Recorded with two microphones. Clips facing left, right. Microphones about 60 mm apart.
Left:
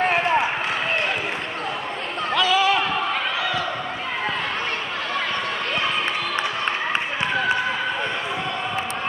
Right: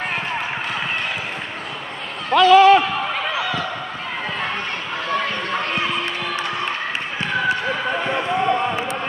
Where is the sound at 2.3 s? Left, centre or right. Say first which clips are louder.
Right 9 dB; right.